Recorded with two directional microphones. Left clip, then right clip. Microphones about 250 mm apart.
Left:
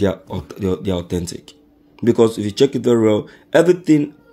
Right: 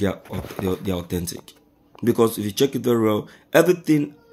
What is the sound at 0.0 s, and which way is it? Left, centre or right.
Speech, centre.